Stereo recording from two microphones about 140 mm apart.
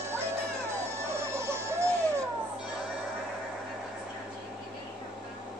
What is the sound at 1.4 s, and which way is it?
Music, 20° right (ahead or behind).